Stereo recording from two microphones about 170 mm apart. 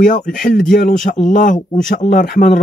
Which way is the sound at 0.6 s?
50° left (ahead or behind).